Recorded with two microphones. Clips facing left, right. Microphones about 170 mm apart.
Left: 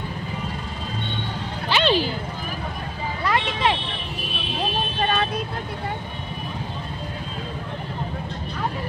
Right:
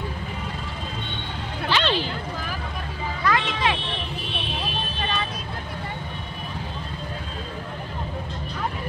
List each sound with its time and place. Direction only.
1.7 s a sound: 15° left (ahead or behind)
3.3 s vehicle: 30° left (ahead or behind)
5.0 s vehicle: 55° left (ahead or behind)